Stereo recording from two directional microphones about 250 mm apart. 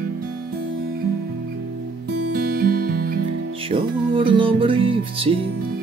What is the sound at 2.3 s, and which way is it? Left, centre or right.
Music, right.